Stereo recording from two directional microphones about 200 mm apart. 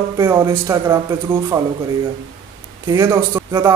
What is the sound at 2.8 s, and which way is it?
Speech, 15° right (ahead or behind).